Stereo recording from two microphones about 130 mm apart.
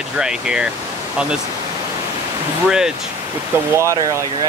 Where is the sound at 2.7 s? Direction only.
5° right (ahead or behind).